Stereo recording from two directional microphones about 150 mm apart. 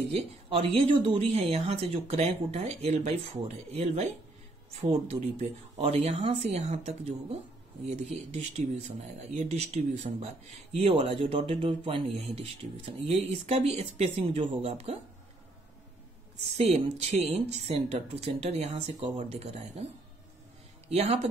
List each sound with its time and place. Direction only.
0.1 s speech: 40° right (ahead or behind)
16.5 s speech: 45° right (ahead or behind)
20.9 s speech: 45° right (ahead or behind)